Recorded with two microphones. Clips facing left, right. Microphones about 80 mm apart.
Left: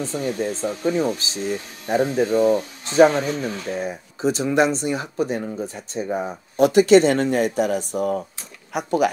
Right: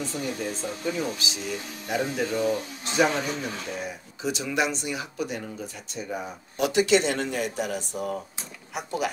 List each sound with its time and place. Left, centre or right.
0.0 s speech: left